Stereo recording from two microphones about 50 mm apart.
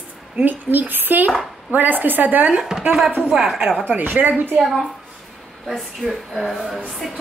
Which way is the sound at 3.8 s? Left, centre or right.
Right.